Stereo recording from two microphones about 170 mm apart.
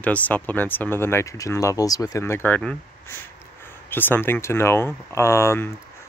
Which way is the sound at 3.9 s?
10° left (ahead or behind).